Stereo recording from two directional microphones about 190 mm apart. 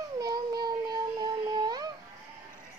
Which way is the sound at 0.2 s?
20° right (ahead or behind).